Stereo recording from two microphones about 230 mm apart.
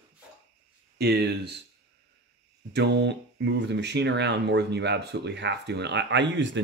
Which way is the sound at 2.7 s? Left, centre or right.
Right.